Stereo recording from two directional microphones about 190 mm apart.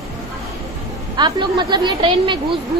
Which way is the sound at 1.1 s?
25° right (ahead or behind).